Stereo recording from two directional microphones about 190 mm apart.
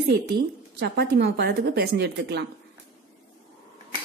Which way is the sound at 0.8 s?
60° right (ahead or behind).